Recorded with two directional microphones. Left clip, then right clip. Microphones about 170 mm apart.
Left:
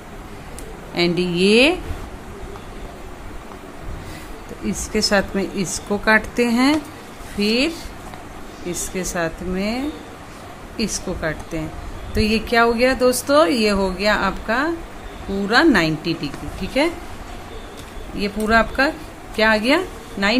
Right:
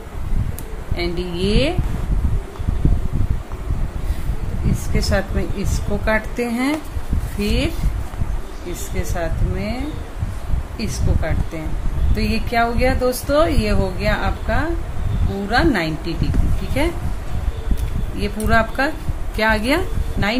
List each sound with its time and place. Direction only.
0.9 s speech: 40° left (ahead or behind)
4.9 s speech: 25° left (ahead or behind)
8.9 s speech: 35° left (ahead or behind)
10.8 s speech: 35° left (ahead or behind)
18.1 s a woman's voice: 10° left (ahead or behind)